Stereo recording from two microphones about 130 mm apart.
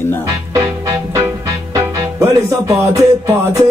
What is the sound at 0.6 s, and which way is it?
Music, 25° right (ahead or behind).